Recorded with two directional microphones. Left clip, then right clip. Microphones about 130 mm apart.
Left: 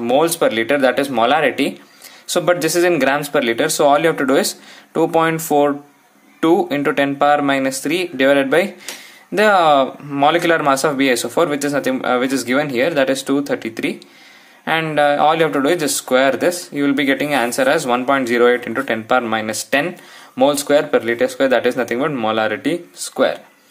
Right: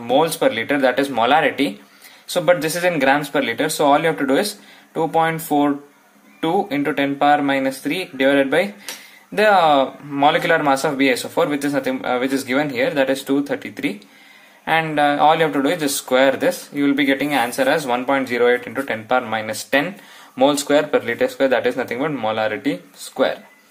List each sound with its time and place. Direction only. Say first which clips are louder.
0.0 s speech: left 2 dB; 45° left (ahead or behind)
20.3 s speech: left 2 dB; 20° left (ahead or behind)